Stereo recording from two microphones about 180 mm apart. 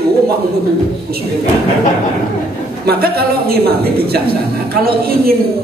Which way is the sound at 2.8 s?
60° right (ahead or behind).